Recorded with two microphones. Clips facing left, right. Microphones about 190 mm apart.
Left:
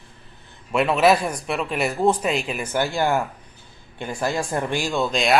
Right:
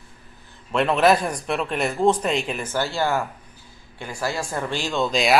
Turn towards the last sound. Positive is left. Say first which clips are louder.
# even
turn(degrees=0)  # may be behind; listen again after turning